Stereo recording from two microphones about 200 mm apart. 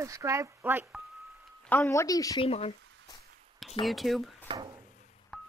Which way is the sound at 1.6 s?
10° left (ahead or behind).